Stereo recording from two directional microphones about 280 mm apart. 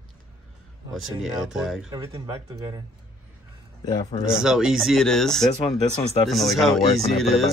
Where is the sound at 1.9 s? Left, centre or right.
Centre.